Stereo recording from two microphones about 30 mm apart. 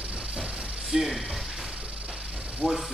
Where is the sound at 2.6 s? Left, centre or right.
Right.